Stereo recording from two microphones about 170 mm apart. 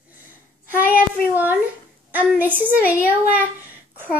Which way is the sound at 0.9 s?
10° right (ahead or behind).